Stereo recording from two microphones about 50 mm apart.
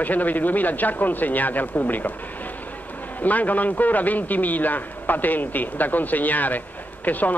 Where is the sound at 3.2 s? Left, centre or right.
Left.